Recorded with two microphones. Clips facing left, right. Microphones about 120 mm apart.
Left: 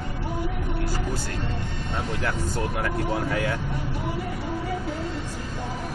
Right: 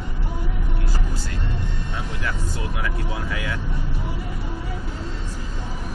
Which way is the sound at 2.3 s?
45° left (ahead or behind).